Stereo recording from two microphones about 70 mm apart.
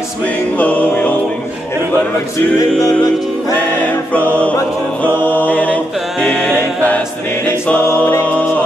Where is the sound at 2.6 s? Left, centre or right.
Left.